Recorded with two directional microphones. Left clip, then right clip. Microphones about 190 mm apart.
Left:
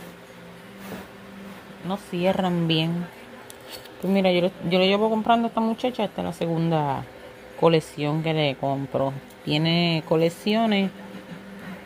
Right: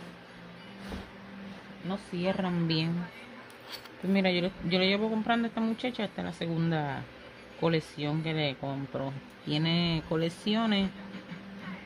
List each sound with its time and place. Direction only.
1.9 s speech: 30° left (ahead or behind)
4.1 s speech: 10° left (ahead or behind)